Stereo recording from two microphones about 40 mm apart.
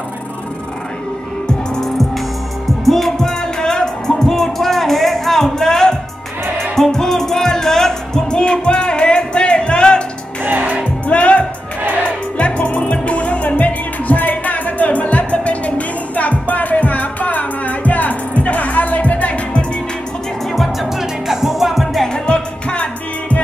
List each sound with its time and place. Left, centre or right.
2.8 s music: centre; by 10.0 s left
10.4 s music: right
11.1 s music: left
21.3 s music: centre
22.2 s music: left